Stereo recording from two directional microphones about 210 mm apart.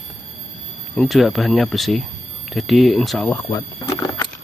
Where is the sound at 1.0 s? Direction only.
Centre (ahead or behind).